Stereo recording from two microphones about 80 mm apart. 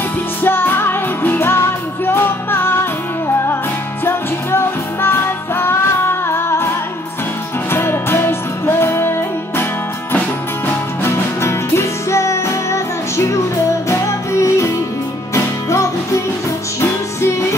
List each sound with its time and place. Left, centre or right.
0.4 s music: left
7.7 s music: left
10.7 s music: left